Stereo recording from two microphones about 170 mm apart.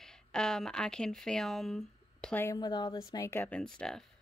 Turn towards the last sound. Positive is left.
turn(degrees=5)  # may be behind; listen again after turning